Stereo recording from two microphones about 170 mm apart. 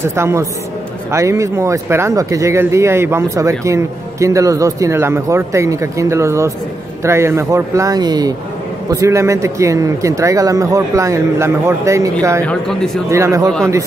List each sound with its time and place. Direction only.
0.0 s speech: 15° right (ahead or behind)
12.4 s speech: 5° left (ahead or behind)
13.1 s speech: 15° right (ahead or behind)